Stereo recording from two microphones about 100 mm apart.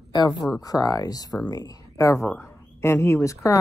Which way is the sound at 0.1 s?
45° left (ahead or behind).